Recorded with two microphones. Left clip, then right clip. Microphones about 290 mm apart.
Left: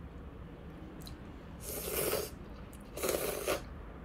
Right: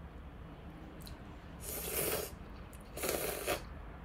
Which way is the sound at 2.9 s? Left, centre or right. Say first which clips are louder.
Left 3 dB; centre.